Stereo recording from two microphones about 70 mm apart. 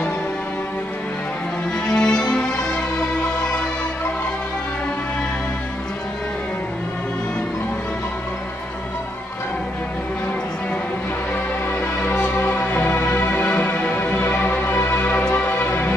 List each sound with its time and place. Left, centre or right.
1.9 s music: centre
12.0 s music: left